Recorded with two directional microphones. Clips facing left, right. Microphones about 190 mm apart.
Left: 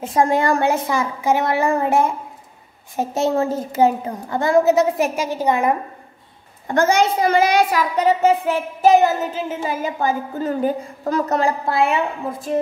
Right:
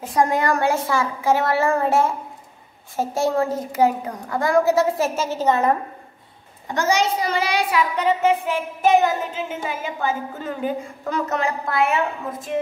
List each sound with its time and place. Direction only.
0.0 s a woman's voice: 25° left (ahead or behind)
6.7 s a child's voice: 55° left (ahead or behind); by 12.4 s 25° left (ahead or behind)